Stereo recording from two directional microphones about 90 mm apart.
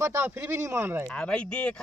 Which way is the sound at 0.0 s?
30° right (ahead or behind).